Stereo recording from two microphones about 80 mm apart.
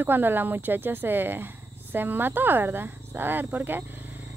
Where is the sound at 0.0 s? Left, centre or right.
Right.